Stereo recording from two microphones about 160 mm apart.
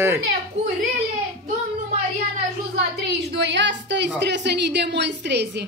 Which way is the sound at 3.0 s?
90° right.